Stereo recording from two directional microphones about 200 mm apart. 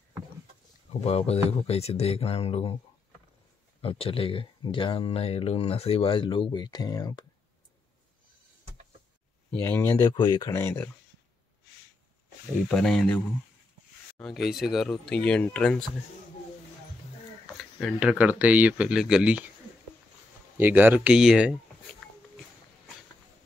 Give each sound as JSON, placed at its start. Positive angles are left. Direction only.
{"t": 1.0, "sound": "speech", "side_deg": 30}
{"t": 3.8, "sound": "speech", "side_deg": 30}
{"t": 9.5, "sound": "speech", "side_deg": 10}
{"t": 12.6, "sound": "speech", "side_deg": 0}
{"t": 17.6, "sound": "speech", "side_deg": 0}
{"t": 20.5, "sound": "speech", "side_deg": -10}